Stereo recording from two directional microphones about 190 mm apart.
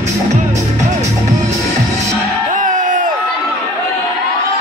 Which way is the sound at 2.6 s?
40° right (ahead or behind).